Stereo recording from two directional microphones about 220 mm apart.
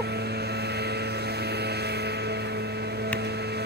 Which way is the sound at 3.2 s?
50° right (ahead or behind).